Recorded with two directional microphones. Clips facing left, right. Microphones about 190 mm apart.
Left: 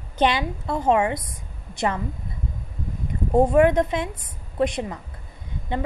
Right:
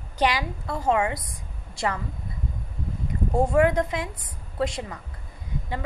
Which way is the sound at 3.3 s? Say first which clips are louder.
Left 4 dB; 20° left (ahead or behind).